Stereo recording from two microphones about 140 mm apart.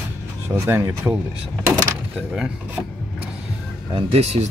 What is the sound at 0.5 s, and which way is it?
Speech, 20° right (ahead or behind).